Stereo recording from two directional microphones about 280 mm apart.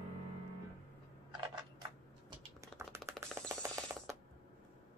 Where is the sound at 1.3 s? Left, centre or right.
Centre.